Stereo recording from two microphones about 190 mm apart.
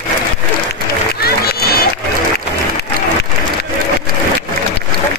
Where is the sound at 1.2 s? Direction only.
55° left (ahead or behind).